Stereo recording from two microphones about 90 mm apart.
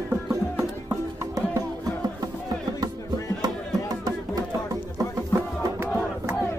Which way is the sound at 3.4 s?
45° right (ahead or behind).